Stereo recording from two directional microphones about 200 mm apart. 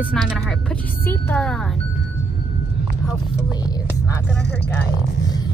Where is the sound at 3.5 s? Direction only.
20° left (ahead or behind).